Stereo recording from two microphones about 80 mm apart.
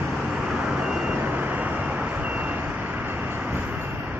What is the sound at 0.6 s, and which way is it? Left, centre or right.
Vehicle, centre.